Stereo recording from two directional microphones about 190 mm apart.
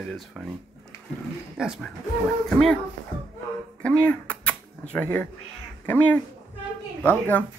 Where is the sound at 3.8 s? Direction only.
5° left (ahead or behind).